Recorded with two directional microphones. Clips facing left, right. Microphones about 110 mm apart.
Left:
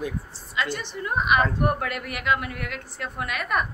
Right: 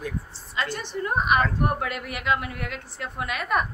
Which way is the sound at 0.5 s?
40° right (ahead or behind).